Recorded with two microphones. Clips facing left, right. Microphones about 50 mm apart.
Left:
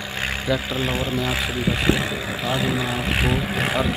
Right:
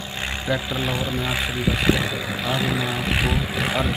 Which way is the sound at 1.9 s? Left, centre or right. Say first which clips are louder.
Even; left.